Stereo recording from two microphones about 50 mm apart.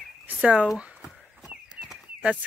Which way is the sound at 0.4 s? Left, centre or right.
Right.